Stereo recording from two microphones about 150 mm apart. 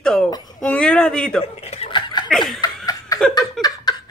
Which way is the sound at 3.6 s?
Centre (ahead or behind).